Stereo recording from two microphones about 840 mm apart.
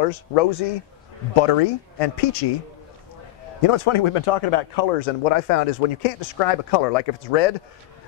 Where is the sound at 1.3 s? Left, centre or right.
Left.